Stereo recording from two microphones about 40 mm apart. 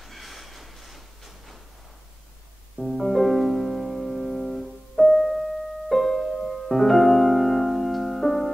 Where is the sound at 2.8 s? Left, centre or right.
Centre.